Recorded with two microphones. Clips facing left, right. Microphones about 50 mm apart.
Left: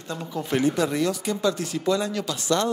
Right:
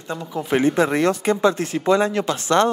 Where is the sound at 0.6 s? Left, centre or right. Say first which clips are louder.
Right 6 dB; right.